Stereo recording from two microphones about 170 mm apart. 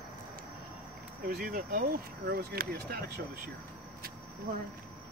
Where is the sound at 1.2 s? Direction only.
60° right (ahead or behind).